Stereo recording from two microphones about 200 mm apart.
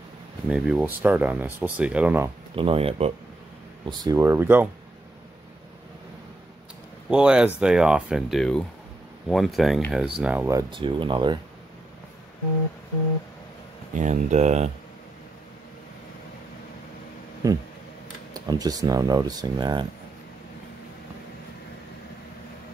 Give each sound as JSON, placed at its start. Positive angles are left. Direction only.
{"t": 0.5, "sound": "speech", "side_deg": -5}
{"t": 2.5, "sound": "speech", "side_deg": -25}
{"t": 3.8, "sound": "speech", "side_deg": -20}
{"t": 7.1, "sound": "speech", "side_deg": -5}
{"t": 10.7, "sound": "speech", "side_deg": -25}
{"t": 13.9, "sound": "speech", "side_deg": -35}
{"t": 17.4, "sound": "speech", "side_deg": -15}